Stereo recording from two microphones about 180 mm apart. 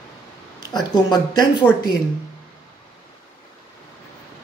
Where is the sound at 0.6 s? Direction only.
25° left (ahead or behind).